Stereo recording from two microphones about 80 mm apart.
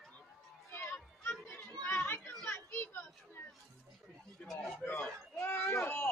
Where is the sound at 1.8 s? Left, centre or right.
Left.